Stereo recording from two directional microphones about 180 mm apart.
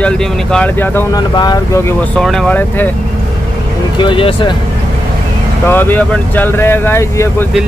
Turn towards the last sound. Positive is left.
turn(degrees=15)  # may be behind; listen again after turning